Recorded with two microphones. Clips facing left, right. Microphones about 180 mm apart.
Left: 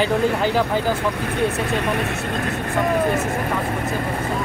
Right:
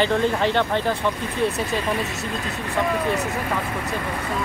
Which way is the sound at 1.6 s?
70° left (ahead or behind).